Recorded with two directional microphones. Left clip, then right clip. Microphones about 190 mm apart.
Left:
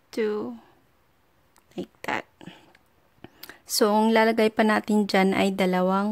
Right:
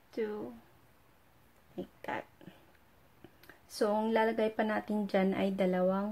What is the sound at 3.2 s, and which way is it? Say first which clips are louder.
Speech: left 12 dB; 50° left (ahead or behind).